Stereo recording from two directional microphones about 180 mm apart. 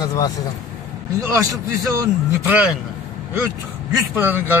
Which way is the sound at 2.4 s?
10° right (ahead or behind).